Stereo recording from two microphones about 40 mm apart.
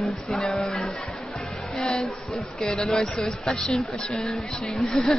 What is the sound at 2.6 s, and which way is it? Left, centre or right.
Speech, centre.